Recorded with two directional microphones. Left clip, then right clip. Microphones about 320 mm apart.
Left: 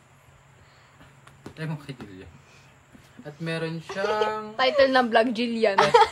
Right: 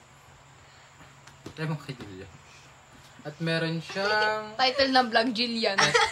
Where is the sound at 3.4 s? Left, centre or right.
Centre.